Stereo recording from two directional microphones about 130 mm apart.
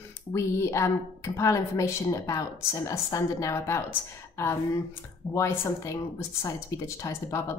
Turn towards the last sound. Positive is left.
turn(degrees=25)  # may be behind; listen again after turning